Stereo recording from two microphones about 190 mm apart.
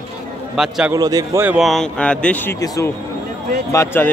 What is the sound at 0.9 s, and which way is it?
A man's voice, 20° right (ahead or behind).